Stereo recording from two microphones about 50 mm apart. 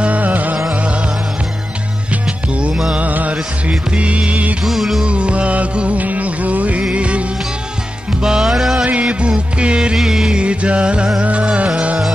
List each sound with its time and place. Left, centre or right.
0.0 s music: right
3.0 s music: right
4.6 s music: centre
5.0 s music: right
8.8 s music: right
9.9 s music: centre
10.4 s music: right